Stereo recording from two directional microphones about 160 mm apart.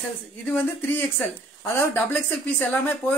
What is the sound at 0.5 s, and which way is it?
Speech, 10° left (ahead or behind).